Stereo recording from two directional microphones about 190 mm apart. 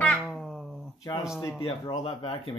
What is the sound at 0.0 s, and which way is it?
Cat, 5° left (ahead or behind).